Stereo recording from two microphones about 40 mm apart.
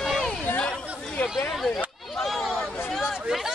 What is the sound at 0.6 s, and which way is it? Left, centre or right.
Chatter, left.